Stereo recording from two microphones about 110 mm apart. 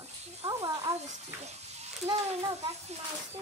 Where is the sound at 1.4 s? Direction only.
80° right.